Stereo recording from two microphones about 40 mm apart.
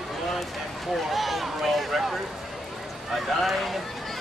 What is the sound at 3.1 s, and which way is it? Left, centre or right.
Speech, centre.